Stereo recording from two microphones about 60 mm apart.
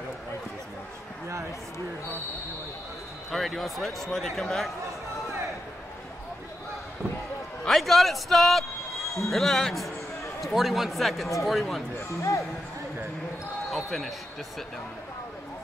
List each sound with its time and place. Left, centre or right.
3.3 s speech: centre
7.6 s a sound: centre
9.3 s speech: centre
12.2 s speech: left
13.7 s basketball bounce: centre